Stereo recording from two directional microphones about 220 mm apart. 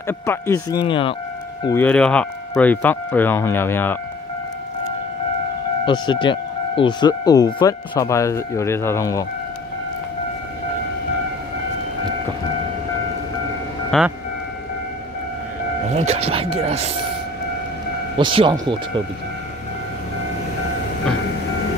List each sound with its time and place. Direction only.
0.0 s speech: 10° left (ahead or behind)
1.6 s speech: 10° left (ahead or behind)
5.9 s speech: 20° left (ahead or behind)
13.8 s speech: centre (ahead or behind)
15.9 s speech: 30° right (ahead or behind)
18.1 s speech: 25° right (ahead or behind)